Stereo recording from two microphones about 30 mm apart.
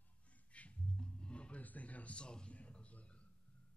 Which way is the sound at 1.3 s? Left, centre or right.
Left.